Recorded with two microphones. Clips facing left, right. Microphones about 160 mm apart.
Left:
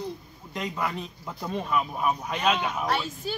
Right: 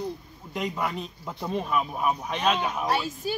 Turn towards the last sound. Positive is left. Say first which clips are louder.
# right 2 dB
turn(degrees=-10)  # may be behind; listen again after turning